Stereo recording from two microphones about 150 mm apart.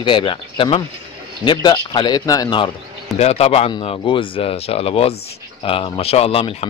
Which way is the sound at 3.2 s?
45° left (ahead or behind).